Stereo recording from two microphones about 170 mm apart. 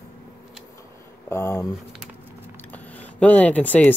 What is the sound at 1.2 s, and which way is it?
Speech, 15° left (ahead or behind).